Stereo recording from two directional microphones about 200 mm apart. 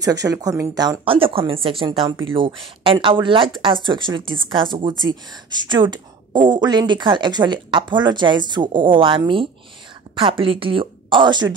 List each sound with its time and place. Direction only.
0.0 s speech: 15° right (ahead or behind)